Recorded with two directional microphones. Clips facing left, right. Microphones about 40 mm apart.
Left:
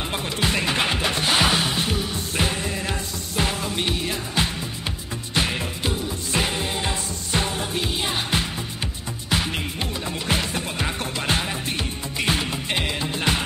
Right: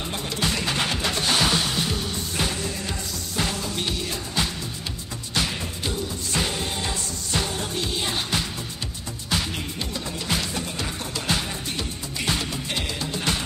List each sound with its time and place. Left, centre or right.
0.1 s music: left